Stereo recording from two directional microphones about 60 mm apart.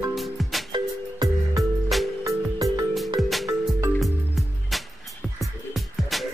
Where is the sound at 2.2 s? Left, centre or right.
Right.